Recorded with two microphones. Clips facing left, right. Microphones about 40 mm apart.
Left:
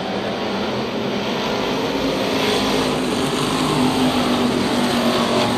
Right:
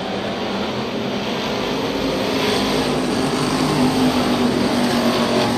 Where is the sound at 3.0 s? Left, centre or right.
Left; by 4.8 s centre.